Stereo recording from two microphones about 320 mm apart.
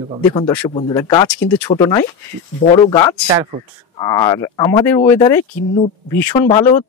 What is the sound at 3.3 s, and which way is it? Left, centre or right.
Speech, centre.